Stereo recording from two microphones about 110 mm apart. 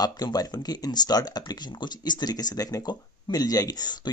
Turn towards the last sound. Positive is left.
turn(degrees=35)  # may be behind; listen again after turning